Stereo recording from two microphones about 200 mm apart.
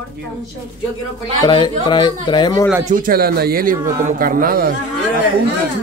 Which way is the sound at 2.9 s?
45° right (ahead or behind).